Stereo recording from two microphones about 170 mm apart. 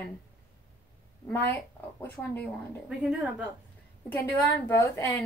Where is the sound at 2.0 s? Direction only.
10° left (ahead or behind).